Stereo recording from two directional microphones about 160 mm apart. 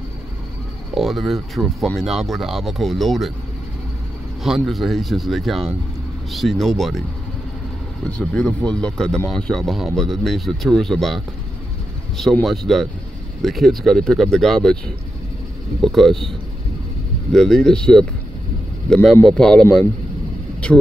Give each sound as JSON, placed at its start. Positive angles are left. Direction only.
{"t": 0.9, "sound": "speech", "side_deg": 0}
{"t": 4.4, "sound": "speech", "side_deg": 0}
{"t": 8.1, "sound": "speech", "side_deg": 5}
{"t": 15.8, "sound": "speech", "side_deg": 0}
{"t": 17.3, "sound": "speech", "side_deg": 5}